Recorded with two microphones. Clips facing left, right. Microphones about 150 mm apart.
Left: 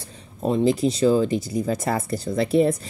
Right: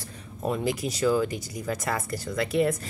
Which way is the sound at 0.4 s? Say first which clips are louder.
Left 8 dB; 25° left (ahead or behind).